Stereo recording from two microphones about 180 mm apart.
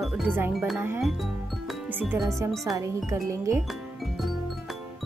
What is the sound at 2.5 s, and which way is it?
Speech, centre (ahead or behind).